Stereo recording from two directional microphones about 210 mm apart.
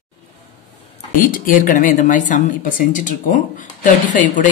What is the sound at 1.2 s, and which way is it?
A woman's voice, 40° left (ahead or behind).